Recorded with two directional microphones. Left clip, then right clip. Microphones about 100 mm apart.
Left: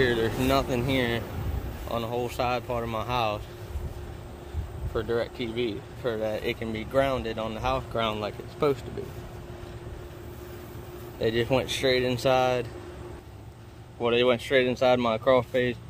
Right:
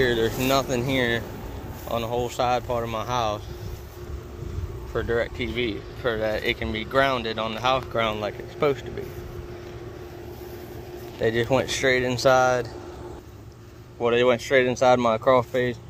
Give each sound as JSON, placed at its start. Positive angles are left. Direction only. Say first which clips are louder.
{"t": 0.0, "sound": "speech", "louder": "right 2 dB", "side_deg": 10}
{"t": 2.9, "sound": "speech", "louder": "even", "side_deg": 25}
{"t": 4.9, "sound": "speech", "louder": "right 3 dB", "side_deg": 5}
{"t": 11.1, "sound": "speech", "louder": "right 3 dB", "side_deg": 10}
{"t": 13.9, "sound": "speech", "louder": "right 3 dB", "side_deg": 10}